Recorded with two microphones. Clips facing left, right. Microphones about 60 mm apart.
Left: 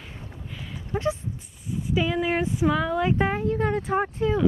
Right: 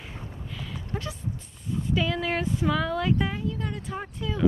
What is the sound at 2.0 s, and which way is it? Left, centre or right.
Speech, centre.